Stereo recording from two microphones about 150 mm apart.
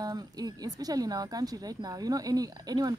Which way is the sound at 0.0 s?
25° right (ahead or behind).